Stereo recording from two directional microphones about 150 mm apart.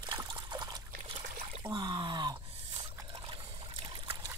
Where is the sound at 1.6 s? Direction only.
25° right (ahead or behind).